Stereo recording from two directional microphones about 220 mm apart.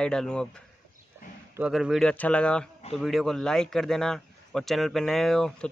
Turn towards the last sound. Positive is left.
turn(degrees=5)  # may be behind; listen again after turning